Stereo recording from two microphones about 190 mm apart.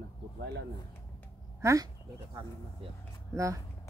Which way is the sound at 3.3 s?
15° right (ahead or behind).